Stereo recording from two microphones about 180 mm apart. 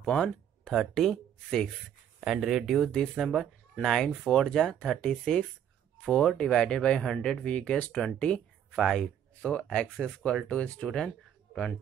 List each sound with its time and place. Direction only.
0.0 s speech: 5° left (ahead or behind)